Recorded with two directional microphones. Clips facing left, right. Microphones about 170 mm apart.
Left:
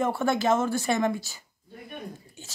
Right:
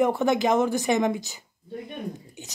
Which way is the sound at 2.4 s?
20° right (ahead or behind).